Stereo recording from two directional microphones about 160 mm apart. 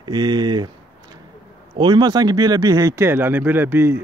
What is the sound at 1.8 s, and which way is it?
Speech, 25° right (ahead or behind).